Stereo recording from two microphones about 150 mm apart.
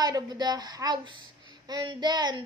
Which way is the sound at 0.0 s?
25° right (ahead or behind).